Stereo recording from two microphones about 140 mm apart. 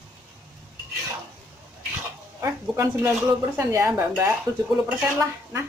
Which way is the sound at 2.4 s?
20° right (ahead or behind).